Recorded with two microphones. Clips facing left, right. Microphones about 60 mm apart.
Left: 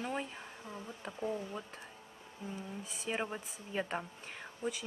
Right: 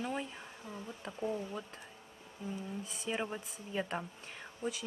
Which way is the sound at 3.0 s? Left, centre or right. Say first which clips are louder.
Even; centre.